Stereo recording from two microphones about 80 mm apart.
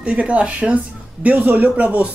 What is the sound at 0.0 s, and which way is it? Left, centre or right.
Speech, centre.